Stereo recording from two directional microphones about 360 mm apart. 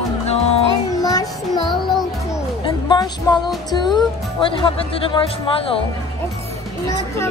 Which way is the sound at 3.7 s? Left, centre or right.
Centre.